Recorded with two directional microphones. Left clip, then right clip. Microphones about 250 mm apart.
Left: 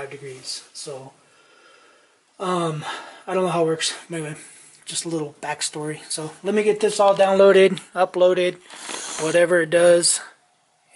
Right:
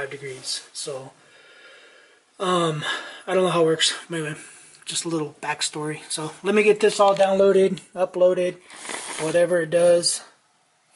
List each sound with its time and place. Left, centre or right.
2.3 s speech: centre